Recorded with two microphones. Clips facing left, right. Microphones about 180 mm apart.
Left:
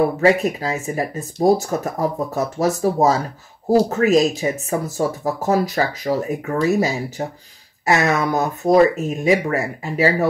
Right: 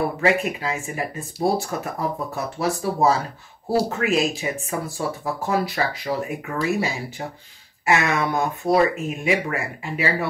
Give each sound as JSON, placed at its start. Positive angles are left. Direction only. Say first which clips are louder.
{"t": 0.2, "sound": "speech", "louder": "left 5 dB", "side_deg": 35}